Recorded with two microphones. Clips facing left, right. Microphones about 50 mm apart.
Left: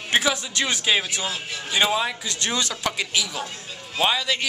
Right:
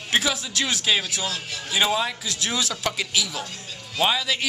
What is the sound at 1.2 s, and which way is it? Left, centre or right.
Speech, centre.